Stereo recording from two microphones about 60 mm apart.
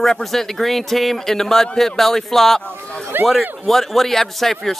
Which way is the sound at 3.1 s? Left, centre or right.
Right.